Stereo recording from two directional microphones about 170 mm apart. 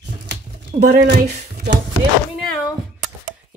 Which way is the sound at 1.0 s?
75° right (ahead or behind).